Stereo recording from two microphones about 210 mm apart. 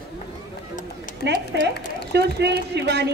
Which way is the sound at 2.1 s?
50° right (ahead or behind).